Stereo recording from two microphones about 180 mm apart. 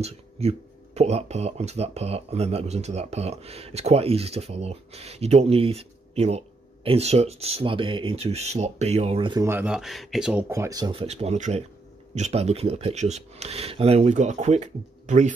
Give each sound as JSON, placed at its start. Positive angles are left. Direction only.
{"t": 0.0, "sound": "speech", "side_deg": -35}
{"t": 9.5, "sound": "speech", "side_deg": -5}
{"t": 10.5, "sound": "speech", "side_deg": -20}